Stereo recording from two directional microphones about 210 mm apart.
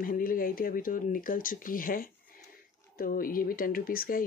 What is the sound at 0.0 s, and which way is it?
Speech, 40° left (ahead or behind).